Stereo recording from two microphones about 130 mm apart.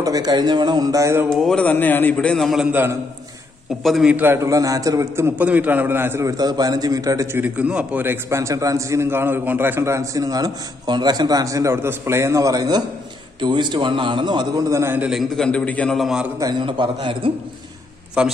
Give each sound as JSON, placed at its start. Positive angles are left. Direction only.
{"t": 0.0, "sound": "a man's voice", "side_deg": -30}
{"t": 1.3, "sound": "a man's voice", "side_deg": 5}
{"t": 2.7, "sound": "a man's voice", "side_deg": -15}
{"t": 3.8, "sound": "a man's voice", "side_deg": -5}
{"t": 7.4, "sound": "a man's voice", "side_deg": -10}
{"t": 15.0, "sound": "a man's voice", "side_deg": 0}
{"t": 16.3, "sound": "a man's voice", "side_deg": -35}
{"t": 18.2, "sound": "a man's voice", "side_deg": -5}